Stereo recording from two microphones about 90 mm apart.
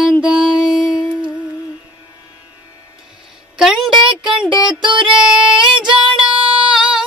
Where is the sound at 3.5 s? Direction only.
5° right (ahead or behind).